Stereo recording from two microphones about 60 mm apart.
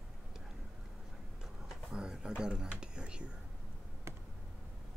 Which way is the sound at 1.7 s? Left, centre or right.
Centre.